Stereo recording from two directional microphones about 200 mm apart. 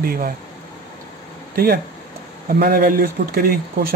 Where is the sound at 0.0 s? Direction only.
45° right (ahead or behind).